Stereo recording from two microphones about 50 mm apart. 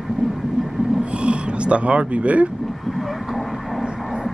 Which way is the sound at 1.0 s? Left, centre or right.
Right.